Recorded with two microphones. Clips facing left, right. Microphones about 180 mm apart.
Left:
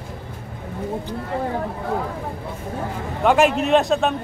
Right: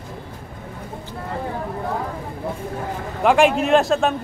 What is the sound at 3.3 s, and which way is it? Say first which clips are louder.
Speech: right 1 dB; centre (ahead or behind).